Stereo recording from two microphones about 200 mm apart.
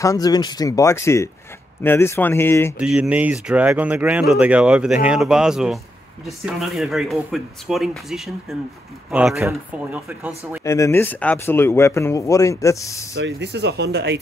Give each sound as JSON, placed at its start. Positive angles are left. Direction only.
{"t": 0.0, "sound": "speech", "side_deg": 20}
{"t": 2.8, "sound": "speech", "side_deg": -5}
{"t": 10.6, "sound": "speech", "side_deg": 15}
{"t": 13.1, "sound": "speech", "side_deg": -60}